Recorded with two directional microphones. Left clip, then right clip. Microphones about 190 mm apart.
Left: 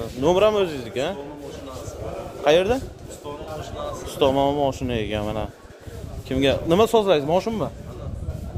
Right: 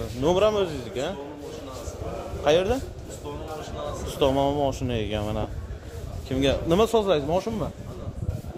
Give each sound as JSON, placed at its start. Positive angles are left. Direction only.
{"t": 0.2, "sound": "a man's voice", "side_deg": 25}
{"t": 2.4, "sound": "a man's voice", "side_deg": 25}
{"t": 4.1, "sound": "a man's voice", "side_deg": 15}